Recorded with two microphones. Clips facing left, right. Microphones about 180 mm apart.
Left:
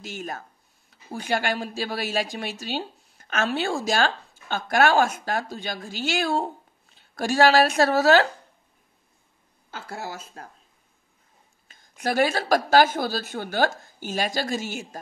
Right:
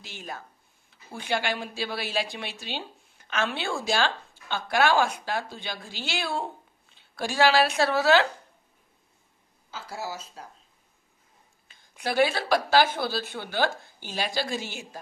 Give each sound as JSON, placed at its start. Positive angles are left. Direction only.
{"t": 0.0, "sound": "speech", "side_deg": 45}
{"t": 9.7, "sound": "speech", "side_deg": 55}
{"t": 11.6, "sound": "speech", "side_deg": 45}